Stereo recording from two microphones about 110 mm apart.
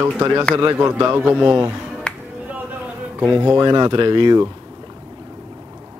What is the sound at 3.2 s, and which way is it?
Speech, 20° right (ahead or behind).